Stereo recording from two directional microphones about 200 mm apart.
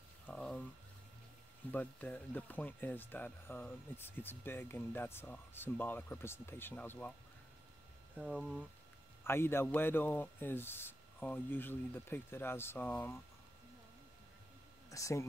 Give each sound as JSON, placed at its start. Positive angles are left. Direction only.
{"t": 0.3, "sound": "a sound", "side_deg": 5}
{"t": 1.7, "sound": "speech", "side_deg": 5}
{"t": 8.2, "sound": "speech", "side_deg": 0}
{"t": 9.2, "sound": "speech", "side_deg": 10}
{"t": 14.9, "sound": "speech", "side_deg": 15}